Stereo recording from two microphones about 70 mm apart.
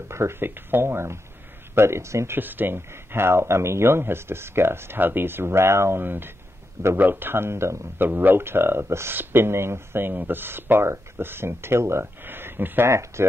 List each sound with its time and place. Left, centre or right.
0.1 s speech: right
2.3 s speech: right
8.0 s speech: right